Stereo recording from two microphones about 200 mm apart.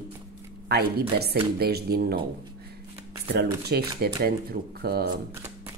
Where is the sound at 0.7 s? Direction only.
55° right (ahead or behind).